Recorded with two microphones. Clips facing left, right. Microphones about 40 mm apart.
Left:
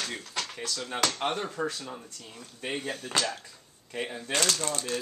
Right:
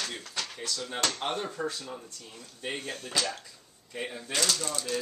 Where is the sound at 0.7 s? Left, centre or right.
Left.